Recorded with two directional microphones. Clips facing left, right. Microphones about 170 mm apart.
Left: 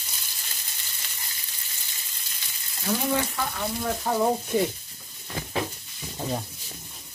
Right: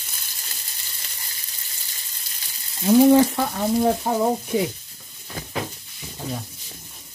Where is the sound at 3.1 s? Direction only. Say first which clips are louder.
Right 11 dB; 35° right (ahead or behind).